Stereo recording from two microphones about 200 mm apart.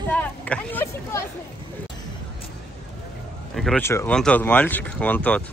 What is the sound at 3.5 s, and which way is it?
Speech, centre (ahead or behind).